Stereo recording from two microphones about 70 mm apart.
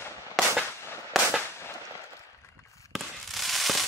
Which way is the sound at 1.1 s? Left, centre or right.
Centre.